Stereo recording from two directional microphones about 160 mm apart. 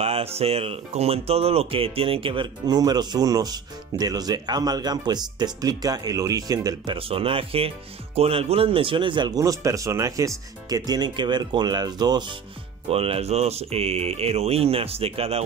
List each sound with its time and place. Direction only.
0.0 s speech: 40° right (ahead or behind); by 7.0 s 20° right (ahead or behind)
7.0 s speech: 35° right (ahead or behind)
12.9 s speech: 40° right (ahead or behind)